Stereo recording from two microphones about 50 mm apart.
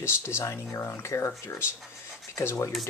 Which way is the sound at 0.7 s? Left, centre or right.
Left.